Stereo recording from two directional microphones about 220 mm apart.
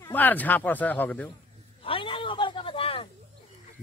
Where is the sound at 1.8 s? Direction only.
25° left (ahead or behind).